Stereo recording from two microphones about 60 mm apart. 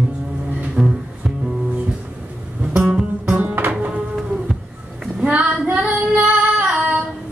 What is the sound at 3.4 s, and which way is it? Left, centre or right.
Music, right.